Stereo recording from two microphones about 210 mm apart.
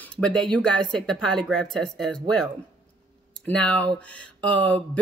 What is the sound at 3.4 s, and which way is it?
Speech, 5° left (ahead or behind).